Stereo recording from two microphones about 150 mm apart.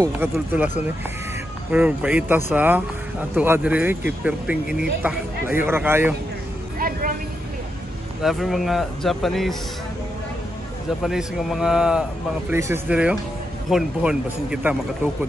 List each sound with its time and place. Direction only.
0.0 s speech: 15° right (ahead or behind)
1.7 s speech: 10° right (ahead or behind)
6.8 s vehicle: 65° right (ahead or behind)
8.2 s speech: centre (ahead or behind)
11.0 s speech: centre (ahead or behind)
12.4 s speech: 15° right (ahead or behind)